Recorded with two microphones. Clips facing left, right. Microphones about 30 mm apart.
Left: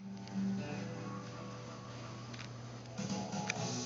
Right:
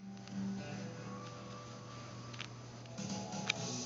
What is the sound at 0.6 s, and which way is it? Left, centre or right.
Music, centre.